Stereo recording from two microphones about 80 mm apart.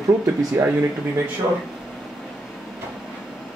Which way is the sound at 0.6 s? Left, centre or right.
Right.